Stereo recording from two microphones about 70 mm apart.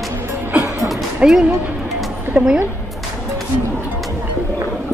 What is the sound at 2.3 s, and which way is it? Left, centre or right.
Speech, right.